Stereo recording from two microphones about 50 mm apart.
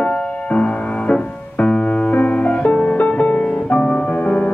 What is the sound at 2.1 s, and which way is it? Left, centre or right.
Music, left.